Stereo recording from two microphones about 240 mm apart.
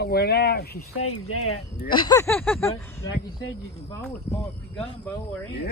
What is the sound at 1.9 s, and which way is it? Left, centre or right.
Speech, centre.